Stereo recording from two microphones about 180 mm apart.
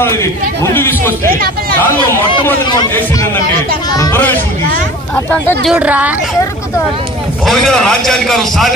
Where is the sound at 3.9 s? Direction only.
15° left (ahead or behind).